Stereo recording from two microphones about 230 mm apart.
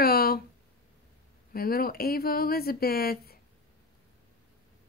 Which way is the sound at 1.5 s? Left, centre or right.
Left.